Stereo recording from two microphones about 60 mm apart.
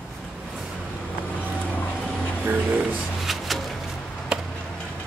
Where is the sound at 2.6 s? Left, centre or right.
Centre.